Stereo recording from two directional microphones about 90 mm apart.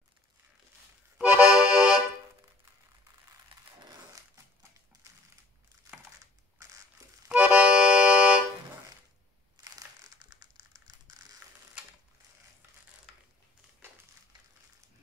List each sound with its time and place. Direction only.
1.1 s accordion: 15° right (ahead or behind)
7.2 s accordion: 15° right (ahead or behind)
9.6 s crumpling: 40° right (ahead or behind)